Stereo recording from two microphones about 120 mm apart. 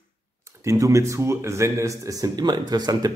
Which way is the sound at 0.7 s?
25° right (ahead or behind).